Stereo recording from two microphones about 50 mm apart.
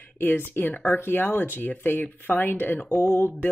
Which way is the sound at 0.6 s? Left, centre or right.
Left.